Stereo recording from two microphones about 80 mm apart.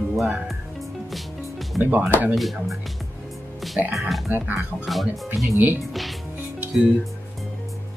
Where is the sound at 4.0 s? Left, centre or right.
Centre.